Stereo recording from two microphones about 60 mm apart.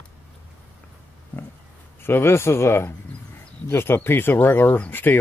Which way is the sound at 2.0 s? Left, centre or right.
Left.